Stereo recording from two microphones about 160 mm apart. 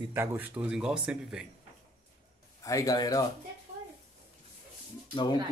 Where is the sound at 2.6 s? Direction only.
20° left (ahead or behind).